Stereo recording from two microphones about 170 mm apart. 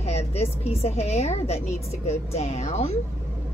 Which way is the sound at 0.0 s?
40° left (ahead or behind).